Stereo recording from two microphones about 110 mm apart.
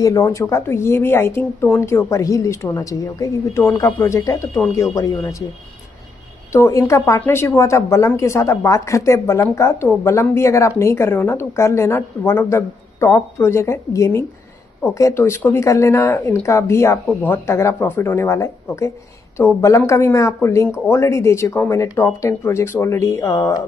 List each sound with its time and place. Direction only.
0.0 s speech: 30° left (ahead or behind)
6.5 s speech: 30° left (ahead or behind)